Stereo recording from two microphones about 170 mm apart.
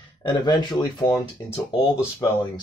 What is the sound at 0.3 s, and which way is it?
Speech, 25° left (ahead or behind).